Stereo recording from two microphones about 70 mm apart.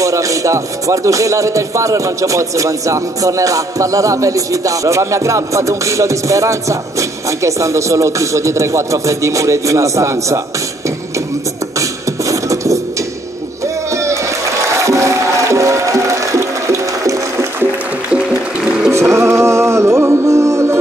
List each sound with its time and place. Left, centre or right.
0.0 s speech: right
12.3 s music: right
14.8 s music: right
18.1 s music: centre
18.9 s music: right